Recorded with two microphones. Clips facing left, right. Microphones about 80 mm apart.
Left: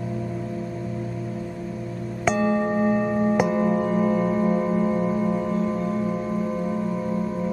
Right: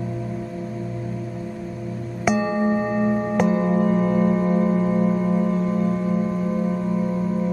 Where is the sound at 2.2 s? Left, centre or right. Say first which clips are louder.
Right 1 dB; centre.